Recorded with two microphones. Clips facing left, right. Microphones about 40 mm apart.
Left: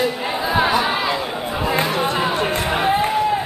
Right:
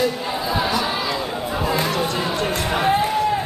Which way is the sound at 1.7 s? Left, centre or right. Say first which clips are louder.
Left 3 dB; left.